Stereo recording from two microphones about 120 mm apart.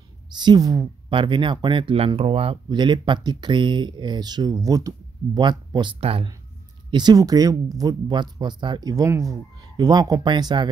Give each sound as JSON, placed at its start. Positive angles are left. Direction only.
{"t": 0.3, "sound": "speech", "side_deg": -35}
{"t": 6.9, "sound": "speech", "side_deg": -35}